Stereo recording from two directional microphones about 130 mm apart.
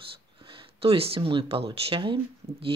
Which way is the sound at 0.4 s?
40° right (ahead or behind).